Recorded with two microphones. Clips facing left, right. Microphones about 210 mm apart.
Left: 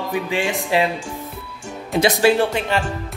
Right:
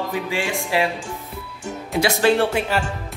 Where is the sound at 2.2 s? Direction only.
Centre (ahead or behind).